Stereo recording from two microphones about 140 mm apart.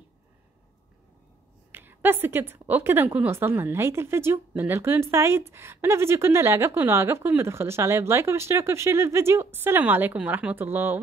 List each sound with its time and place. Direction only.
1.7 s a woman's voice: 15° right (ahead or behind)